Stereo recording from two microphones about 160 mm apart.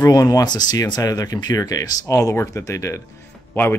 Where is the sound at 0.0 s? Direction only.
25° left (ahead or behind).